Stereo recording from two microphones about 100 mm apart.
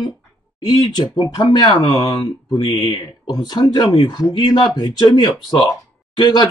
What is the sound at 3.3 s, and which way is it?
Speech, 45° left (ahead or behind).